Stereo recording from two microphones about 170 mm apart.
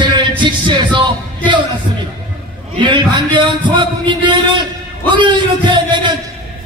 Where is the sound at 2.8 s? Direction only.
30° right (ahead or behind).